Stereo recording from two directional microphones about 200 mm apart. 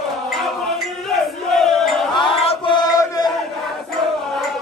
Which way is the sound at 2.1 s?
25° left (ahead or behind).